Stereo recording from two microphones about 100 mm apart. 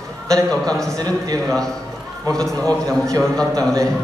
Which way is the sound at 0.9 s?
40° right (ahead or behind).